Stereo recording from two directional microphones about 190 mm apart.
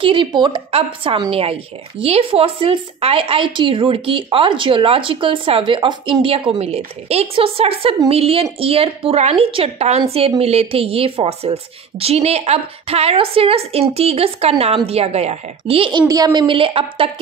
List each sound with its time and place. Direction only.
0.0 s a woman's voice: 25° right (ahead or behind)